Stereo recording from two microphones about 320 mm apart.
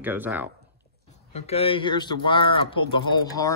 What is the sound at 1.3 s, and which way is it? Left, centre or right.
A man's voice, centre.